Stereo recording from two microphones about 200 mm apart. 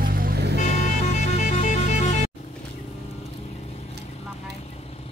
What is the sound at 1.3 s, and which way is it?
Vehicle, 35° left (ahead or behind).